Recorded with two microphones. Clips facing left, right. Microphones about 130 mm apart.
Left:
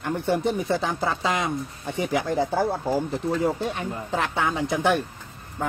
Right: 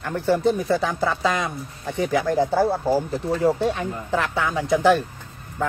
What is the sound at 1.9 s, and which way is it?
Speech, 20° left (ahead or behind).